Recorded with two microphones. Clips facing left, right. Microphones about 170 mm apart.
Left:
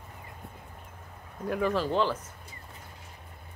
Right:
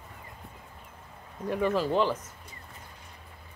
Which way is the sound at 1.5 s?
Centre (ahead or behind).